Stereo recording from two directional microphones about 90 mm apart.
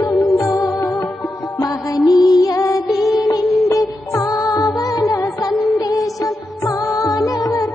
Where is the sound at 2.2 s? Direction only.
45° left (ahead or behind).